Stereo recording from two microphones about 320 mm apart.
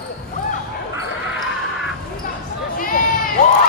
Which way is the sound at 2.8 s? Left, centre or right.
Left.